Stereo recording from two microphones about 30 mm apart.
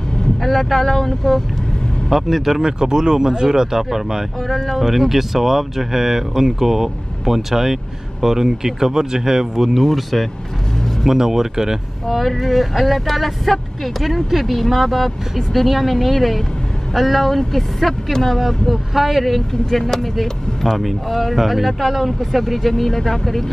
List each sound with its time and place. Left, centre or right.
0.4 s speech: centre
2.6 s speech: right
4.5 s speech: centre
9.8 s speech: centre
11.1 s speech: centre
12.1 s speech: centre
18.9 s speech: centre
21.6 s speech: centre